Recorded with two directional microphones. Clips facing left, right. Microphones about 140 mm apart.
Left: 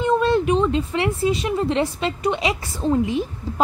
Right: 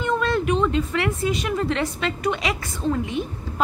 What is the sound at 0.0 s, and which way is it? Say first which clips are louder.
A woman's voice: left 4 dB; 30° left (ahead or behind).